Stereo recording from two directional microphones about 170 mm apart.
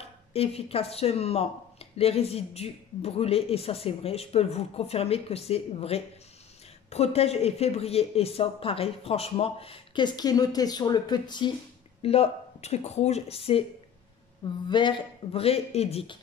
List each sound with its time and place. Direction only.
0.3 s speech: 35° left (ahead or behind)
14.7 s speech: 25° left (ahead or behind)